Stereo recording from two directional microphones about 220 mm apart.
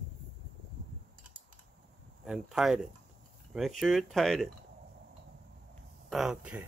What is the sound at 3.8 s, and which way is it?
Speech, centre (ahead or behind).